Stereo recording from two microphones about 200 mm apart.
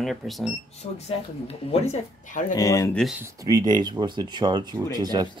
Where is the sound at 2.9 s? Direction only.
Centre (ahead or behind).